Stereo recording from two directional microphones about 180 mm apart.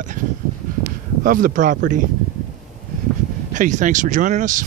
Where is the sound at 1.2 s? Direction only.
45° right (ahead or behind).